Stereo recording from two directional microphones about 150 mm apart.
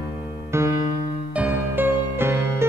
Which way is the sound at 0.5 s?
15° right (ahead or behind).